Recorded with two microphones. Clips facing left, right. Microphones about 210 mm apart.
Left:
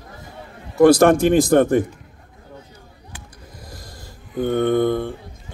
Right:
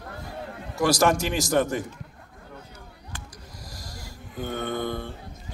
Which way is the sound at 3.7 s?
55° left (ahead or behind).